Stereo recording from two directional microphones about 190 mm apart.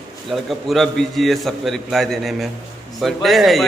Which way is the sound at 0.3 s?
Centre (ahead or behind).